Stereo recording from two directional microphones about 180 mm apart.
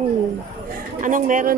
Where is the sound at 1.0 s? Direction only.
45° right (ahead or behind).